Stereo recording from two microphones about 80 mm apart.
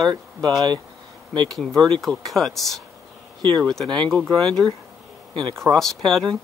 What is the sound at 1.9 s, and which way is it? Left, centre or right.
Speech, centre.